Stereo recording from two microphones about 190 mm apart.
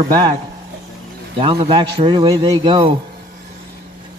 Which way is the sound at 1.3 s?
25° right (ahead or behind).